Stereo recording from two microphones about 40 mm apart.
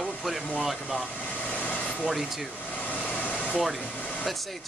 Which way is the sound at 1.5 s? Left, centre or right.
Left.